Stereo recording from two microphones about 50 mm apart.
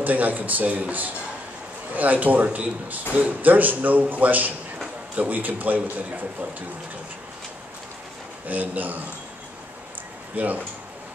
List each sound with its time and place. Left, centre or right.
0.0 s a man's voice: right
8.5 s speech: right
10.3 s speech: right